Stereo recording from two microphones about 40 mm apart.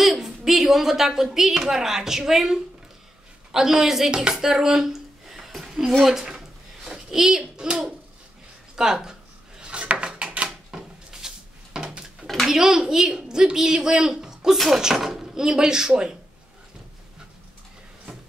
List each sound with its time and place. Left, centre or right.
0.0 s a woman's voice: centre
4.1 s music: right
4.5 s a sound: centre
7.5 s music: right
8.7 s speech: centre
9.6 s wood: right
10.7 s a sound: centre
12.4 s a woman's voice: centre